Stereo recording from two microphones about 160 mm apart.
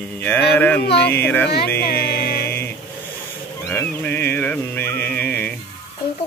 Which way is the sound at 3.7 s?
15° left (ahead or behind).